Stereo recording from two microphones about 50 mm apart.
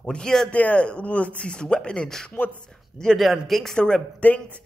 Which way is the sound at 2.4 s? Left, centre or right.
Left.